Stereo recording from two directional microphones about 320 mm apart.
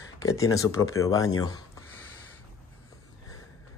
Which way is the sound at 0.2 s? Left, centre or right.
Centre.